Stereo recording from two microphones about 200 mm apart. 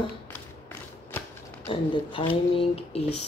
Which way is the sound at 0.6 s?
10° left (ahead or behind).